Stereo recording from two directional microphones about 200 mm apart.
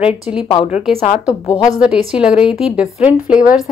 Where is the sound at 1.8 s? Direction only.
5° right (ahead or behind).